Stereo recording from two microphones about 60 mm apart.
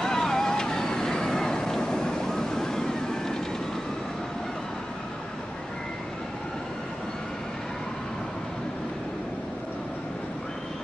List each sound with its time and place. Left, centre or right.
0.0 s vehicle: centre